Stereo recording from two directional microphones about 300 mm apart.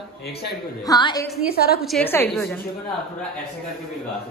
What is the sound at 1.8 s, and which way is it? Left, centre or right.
Speech, centre.